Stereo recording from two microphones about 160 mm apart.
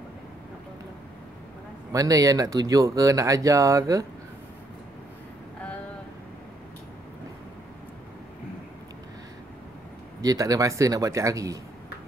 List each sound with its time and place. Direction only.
1.9 s speech: 20° right (ahead or behind)
10.2 s speech: 20° right (ahead or behind)